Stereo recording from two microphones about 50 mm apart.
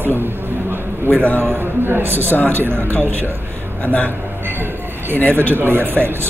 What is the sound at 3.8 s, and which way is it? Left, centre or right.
Speech, left.